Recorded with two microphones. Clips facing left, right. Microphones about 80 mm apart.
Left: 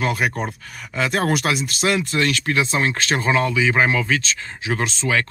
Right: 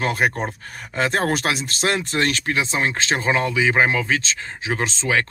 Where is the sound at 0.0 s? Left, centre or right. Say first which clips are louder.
Right 1 dB; right.